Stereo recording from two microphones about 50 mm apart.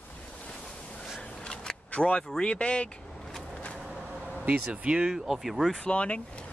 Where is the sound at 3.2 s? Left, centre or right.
Centre.